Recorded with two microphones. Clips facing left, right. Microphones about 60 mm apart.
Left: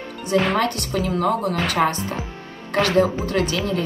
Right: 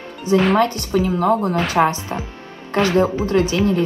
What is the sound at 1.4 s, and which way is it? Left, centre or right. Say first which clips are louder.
A woman's voice: right 3 dB; right.